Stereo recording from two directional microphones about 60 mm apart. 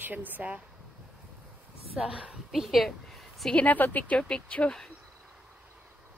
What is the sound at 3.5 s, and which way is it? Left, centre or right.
Speech, left.